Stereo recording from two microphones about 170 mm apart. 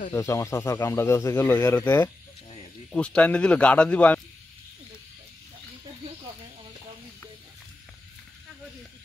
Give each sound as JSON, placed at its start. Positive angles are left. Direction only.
{"t": 0.1, "sound": "speech", "side_deg": 15}